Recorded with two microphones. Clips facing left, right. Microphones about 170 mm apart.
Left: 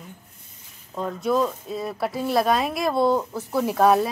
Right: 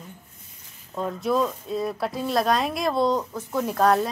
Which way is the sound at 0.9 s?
Centre (ahead or behind).